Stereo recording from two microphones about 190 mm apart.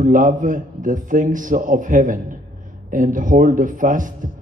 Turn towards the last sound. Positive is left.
turn(degrees=-45)  # may be behind; listen again after turning